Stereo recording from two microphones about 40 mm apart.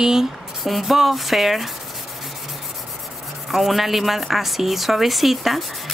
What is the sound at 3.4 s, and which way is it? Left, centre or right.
A woman's voice, centre.